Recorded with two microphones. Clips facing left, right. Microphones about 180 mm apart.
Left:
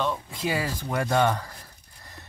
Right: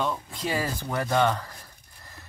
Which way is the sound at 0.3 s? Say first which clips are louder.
Left 1 dB; 10° left (ahead or behind).